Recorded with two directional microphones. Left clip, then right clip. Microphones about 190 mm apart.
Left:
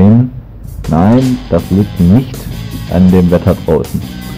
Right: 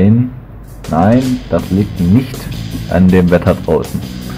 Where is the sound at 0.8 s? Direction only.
Centre (ahead or behind).